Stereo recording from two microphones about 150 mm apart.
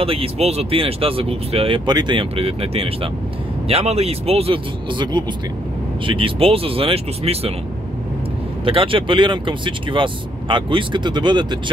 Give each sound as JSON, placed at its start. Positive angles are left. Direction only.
{"t": 0.0, "sound": "speech", "side_deg": -40}
{"t": 1.9, "sound": "speech", "side_deg": -30}
{"t": 8.6, "sound": "speech", "side_deg": -35}